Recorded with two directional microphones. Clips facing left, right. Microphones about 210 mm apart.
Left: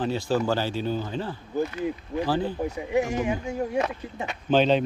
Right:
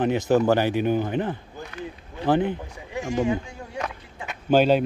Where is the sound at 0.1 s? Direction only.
20° right (ahead or behind).